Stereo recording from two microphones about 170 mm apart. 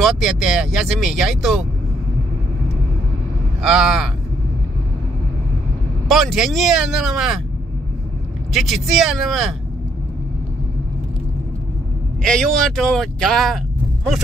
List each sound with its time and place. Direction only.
0.0 s speech: centre (ahead or behind)
3.6 s speech: centre (ahead or behind)
6.0 s speech: centre (ahead or behind)
8.5 s speech: centre (ahead or behind)
12.2 s speech: 5° left (ahead or behind)